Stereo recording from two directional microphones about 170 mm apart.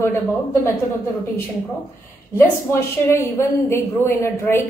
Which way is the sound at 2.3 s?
15° left (ahead or behind).